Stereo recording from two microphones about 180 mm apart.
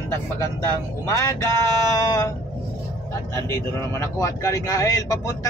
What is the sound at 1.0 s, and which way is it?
Speech, 15° left (ahead or behind).